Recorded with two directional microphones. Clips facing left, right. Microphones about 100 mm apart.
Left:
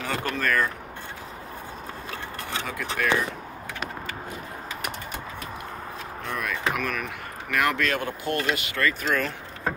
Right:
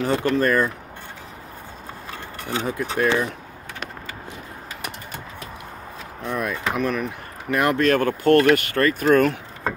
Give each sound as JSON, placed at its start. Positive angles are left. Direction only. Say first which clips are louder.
{"t": 0.0, "sound": "speech", "louder": "right 8 dB", "side_deg": -30}
{"t": 2.6, "sound": "speech", "louder": "right 7 dB", "side_deg": -30}
{"t": 6.2, "sound": "speech", "louder": "right 4 dB", "side_deg": -25}
{"t": 7.9, "sound": "speech", "louder": "right 11 dB", "side_deg": -55}